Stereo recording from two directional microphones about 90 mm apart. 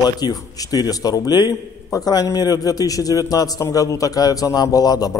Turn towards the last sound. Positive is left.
turn(degrees=45)  # may be behind; listen again after turning